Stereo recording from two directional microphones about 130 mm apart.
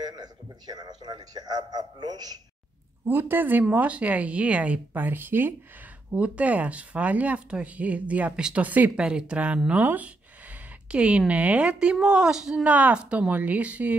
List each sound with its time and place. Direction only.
0.0 s speech: 30° right (ahead or behind)
3.1 s speech: 15° right (ahead or behind)